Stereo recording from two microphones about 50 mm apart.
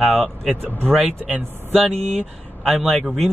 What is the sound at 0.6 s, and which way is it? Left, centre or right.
Speech, right.